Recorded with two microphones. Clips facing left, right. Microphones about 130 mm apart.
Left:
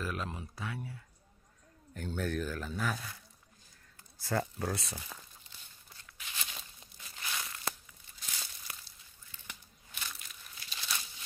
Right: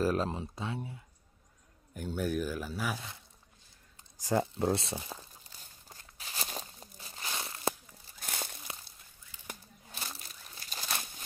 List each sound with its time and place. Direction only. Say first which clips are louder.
0.0 s speech: right 8 dB; 35° right (ahead or behind)
2.0 s speech: right 2 dB; 10° right (ahead or behind); by 5.2 s 25° right (ahead or behind)
5.5 s a sound: right 3 dB; 40° right (ahead or behind)
7.0 s crunch: right 2 dB; 30° right (ahead or behind)
8.2 s crunch: right 7 dB; 50° right (ahead or behind)
9.5 s crumpling: right 6 dB; 35° right (ahead or behind)